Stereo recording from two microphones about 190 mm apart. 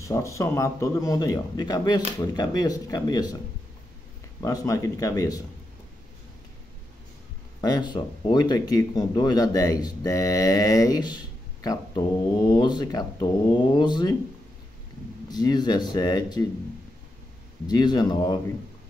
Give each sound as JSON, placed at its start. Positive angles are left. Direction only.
{"t": 0.0, "sound": "a man's voice", "side_deg": 15}
{"t": 4.4, "sound": "a man's voice", "side_deg": 20}
{"t": 7.6, "sound": "speech", "side_deg": 20}
{"t": 15.2, "sound": "speech", "side_deg": 20}
{"t": 17.6, "sound": "speech", "side_deg": 20}